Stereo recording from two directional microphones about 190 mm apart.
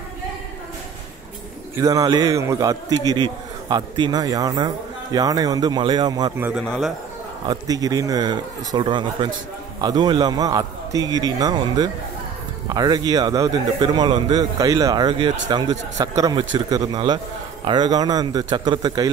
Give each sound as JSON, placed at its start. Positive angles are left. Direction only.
{"t": 1.8, "sound": "a man's voice", "side_deg": -20}
{"t": 6.6, "sound": "a man's voice", "side_deg": 5}
{"t": 7.4, "sound": "a man's voice", "side_deg": -20}